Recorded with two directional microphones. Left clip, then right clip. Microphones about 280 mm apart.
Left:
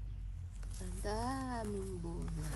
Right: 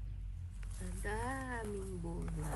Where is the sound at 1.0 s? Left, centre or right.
Centre.